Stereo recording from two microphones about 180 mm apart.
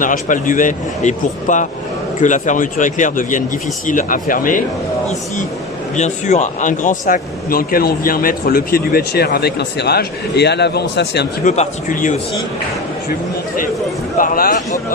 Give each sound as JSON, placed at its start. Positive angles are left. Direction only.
{"t": 0.0, "sound": "speech", "side_deg": 45}
{"t": 5.9, "sound": "speech", "side_deg": 40}
{"t": 11.4, "sound": "a man's voice", "side_deg": 40}
{"t": 14.1, "sound": "speech", "side_deg": 50}